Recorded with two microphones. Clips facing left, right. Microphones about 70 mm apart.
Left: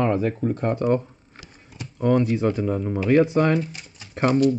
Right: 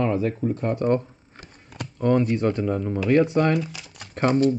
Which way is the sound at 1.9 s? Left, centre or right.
Centre.